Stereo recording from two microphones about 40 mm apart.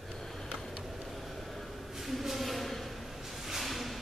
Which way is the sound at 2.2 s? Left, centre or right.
Centre.